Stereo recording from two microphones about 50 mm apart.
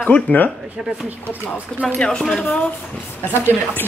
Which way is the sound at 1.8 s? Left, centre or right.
Centre.